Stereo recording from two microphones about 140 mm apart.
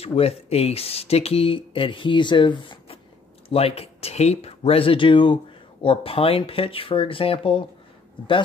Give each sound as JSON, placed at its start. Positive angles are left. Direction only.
{"t": 0.0, "sound": "speech", "side_deg": 45}